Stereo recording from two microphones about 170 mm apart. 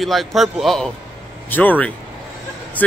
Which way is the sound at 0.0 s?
Centre (ahead or behind).